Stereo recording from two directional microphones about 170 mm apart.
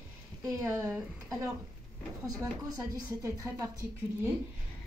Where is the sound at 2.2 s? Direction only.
20° right (ahead or behind).